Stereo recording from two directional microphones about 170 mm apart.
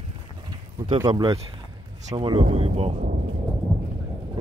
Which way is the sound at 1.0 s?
25° right (ahead or behind).